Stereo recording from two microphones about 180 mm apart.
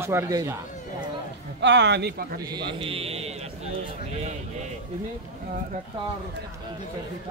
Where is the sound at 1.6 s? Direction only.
75° right (ahead or behind).